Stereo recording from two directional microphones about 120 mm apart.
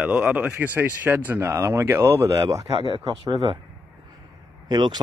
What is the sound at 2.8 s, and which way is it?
Speech, 45° right (ahead or behind).